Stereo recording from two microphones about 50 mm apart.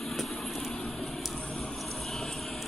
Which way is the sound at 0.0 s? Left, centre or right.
Centre.